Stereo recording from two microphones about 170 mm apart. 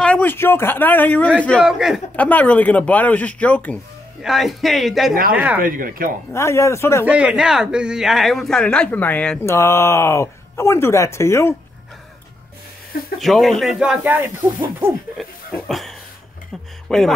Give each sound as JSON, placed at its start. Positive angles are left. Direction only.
{"t": 0.0, "sound": "speech", "side_deg": 10}
{"t": 1.6, "sound": "a man's voice", "side_deg": -5}
{"t": 2.1, "sound": "a man's voice", "side_deg": 10}
{"t": 5.6, "sound": "speech", "side_deg": -55}
{"t": 6.3, "sound": "speech", "side_deg": 15}
{"t": 7.1, "sound": "speech", "side_deg": -5}
{"t": 13.2, "sound": "a man's voice", "side_deg": 0}
{"t": 15.2, "sound": "a man's voice", "side_deg": 0}
{"t": 16.9, "sound": "a man's voice", "side_deg": 0}